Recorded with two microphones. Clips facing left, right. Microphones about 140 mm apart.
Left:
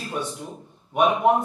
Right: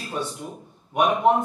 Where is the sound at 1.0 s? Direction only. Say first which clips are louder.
Even; centre (ahead or behind).